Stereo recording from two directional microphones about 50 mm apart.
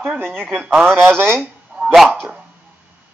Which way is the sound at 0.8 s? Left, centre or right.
Centre.